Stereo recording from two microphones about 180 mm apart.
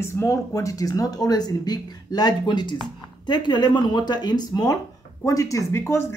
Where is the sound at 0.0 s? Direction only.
15° left (ahead or behind).